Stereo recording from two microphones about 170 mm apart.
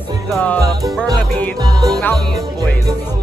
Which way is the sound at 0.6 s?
20° right (ahead or behind).